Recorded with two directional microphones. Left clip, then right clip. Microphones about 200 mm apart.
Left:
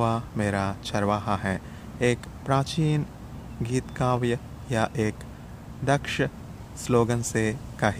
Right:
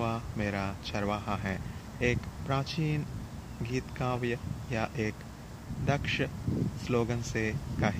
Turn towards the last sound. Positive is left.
turn(degrees=25)  # may be behind; listen again after turning